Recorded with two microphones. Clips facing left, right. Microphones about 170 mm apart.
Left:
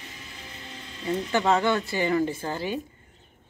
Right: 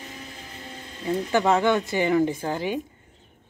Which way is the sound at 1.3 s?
15° right (ahead or behind).